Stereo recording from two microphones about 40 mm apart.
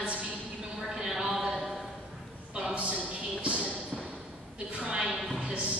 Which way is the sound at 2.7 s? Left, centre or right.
Right.